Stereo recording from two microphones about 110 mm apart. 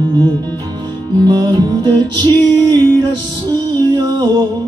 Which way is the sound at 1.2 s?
40° right (ahead or behind).